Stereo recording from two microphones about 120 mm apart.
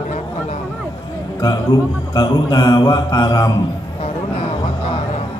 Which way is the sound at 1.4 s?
35° left (ahead or behind).